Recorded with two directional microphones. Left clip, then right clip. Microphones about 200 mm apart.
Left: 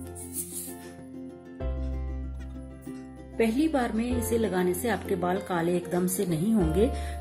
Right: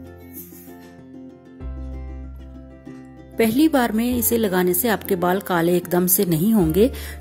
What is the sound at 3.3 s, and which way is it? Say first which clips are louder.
A woman's voice: right 8 dB; 55° right (ahead or behind).